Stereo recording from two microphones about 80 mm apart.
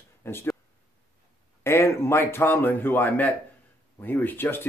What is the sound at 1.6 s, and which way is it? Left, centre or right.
Speech, left.